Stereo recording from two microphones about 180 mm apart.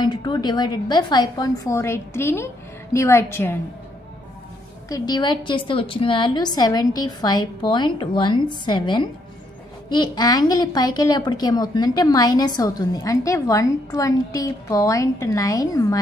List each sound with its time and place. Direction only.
0.0 s a woman's voice: 25° left (ahead or behind)
4.8 s a woman's voice: 20° left (ahead or behind)